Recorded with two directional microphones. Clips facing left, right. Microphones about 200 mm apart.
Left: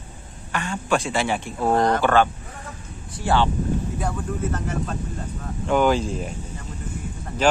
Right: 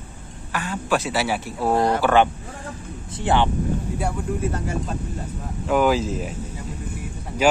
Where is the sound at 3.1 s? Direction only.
20° right (ahead or behind).